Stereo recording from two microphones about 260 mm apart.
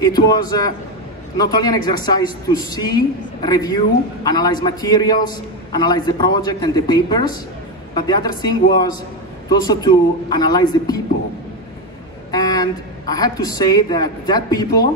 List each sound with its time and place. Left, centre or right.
0.0 s a man's voice: centre
12.3 s a woman's voice: centre